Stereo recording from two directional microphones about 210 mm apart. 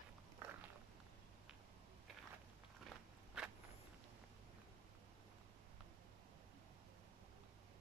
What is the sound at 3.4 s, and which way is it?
Walk, 5° right (ahead or behind).